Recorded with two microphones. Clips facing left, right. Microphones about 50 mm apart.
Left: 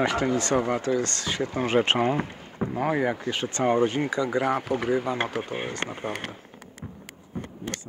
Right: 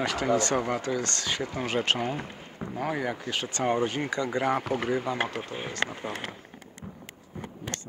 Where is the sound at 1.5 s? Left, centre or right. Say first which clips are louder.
Left 6 dB; left; by 4.7 s centre.